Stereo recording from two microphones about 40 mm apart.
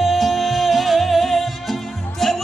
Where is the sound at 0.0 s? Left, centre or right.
Centre.